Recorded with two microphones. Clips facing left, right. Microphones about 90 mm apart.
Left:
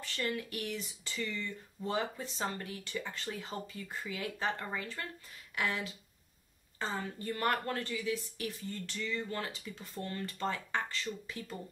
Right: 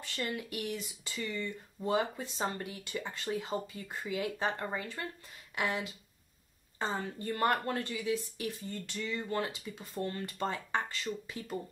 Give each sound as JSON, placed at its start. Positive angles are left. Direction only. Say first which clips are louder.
{"t": 0.0, "sound": "speech", "louder": "left 1 dB", "side_deg": -20}